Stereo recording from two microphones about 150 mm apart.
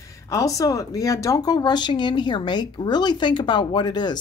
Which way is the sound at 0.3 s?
20° left (ahead or behind).